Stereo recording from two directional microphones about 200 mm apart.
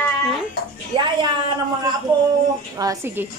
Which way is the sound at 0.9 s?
25° right (ahead or behind).